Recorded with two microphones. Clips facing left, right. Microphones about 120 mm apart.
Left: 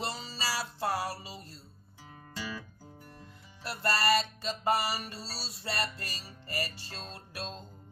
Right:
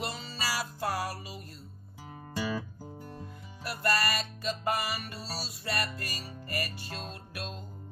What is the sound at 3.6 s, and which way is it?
Music, 30° left (ahead or behind).